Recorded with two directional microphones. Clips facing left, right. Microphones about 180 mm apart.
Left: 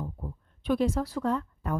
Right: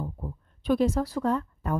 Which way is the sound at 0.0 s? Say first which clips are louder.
Right 2 dB; 40° right (ahead or behind).